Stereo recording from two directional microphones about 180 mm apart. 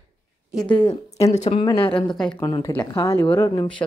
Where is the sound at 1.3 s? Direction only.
40° left (ahead or behind).